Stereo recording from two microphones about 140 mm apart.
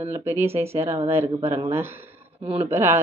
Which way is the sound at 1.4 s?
45° right (ahead or behind).